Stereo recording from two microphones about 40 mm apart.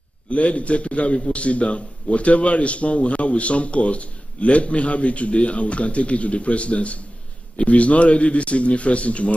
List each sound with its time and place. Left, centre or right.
0.3 s a man's voice: left